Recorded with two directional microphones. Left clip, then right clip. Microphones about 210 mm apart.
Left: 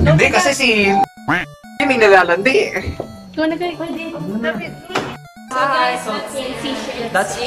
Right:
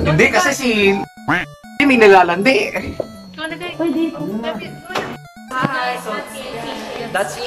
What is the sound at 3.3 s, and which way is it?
Speech, 20° left (ahead or behind).